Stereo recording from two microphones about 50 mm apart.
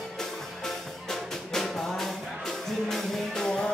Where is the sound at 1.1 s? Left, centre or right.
Centre.